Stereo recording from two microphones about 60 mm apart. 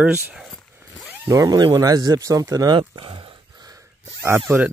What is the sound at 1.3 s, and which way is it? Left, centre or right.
Speech, right.